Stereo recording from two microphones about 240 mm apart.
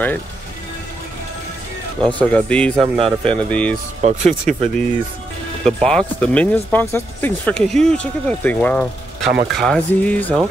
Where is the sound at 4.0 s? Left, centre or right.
Right.